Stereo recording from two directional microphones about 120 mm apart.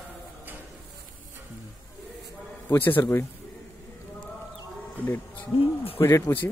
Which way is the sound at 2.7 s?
15° left (ahead or behind).